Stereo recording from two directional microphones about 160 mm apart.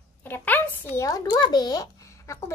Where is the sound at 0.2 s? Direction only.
15° left (ahead or behind).